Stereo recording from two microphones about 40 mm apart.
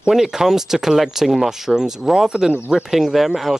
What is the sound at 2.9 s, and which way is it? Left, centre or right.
Speech, centre.